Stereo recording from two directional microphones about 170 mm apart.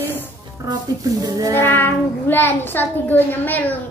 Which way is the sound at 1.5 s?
10° left (ahead or behind).